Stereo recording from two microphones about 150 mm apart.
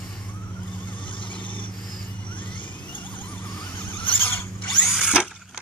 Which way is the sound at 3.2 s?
5° left (ahead or behind).